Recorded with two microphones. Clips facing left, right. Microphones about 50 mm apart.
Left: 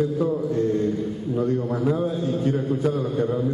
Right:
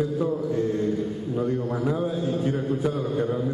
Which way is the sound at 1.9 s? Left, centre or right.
Centre.